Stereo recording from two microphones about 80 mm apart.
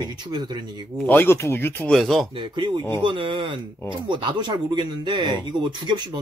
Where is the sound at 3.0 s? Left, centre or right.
Right.